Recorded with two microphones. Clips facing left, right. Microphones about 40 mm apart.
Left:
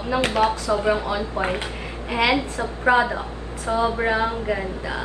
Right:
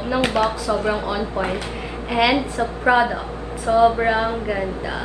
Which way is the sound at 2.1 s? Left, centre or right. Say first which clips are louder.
Right 2 dB; centre.